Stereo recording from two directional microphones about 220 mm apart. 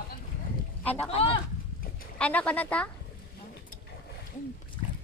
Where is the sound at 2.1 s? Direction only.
5° left (ahead or behind).